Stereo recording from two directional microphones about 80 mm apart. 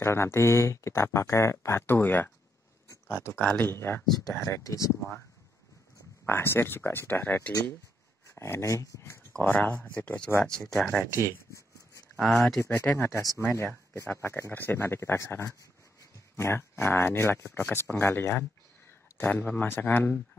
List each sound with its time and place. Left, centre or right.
0.0 s speech: left
4.3 s speech: left
6.2 s speech: left
8.4 s speech: left
9.5 s speech: centre
12.2 s speech: centre
12.6 s speech: left